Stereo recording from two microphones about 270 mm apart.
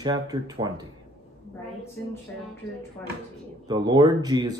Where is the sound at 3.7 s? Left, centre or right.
Centre.